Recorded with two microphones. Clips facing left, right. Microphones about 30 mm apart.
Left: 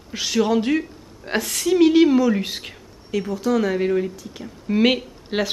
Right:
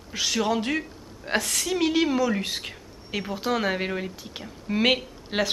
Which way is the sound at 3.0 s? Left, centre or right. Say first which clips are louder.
Left 5 dB; right.